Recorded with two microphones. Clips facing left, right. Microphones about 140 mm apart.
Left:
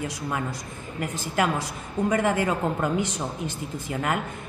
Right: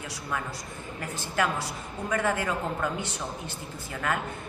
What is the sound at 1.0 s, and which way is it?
A woman's voice, 15° left (ahead or behind).